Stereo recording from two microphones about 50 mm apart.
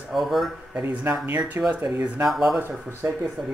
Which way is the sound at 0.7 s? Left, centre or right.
Right.